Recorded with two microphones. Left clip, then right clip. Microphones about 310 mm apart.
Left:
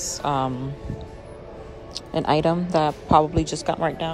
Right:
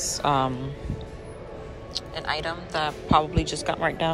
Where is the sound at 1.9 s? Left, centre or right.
Centre.